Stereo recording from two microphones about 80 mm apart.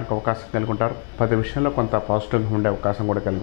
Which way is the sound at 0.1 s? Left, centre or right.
Left.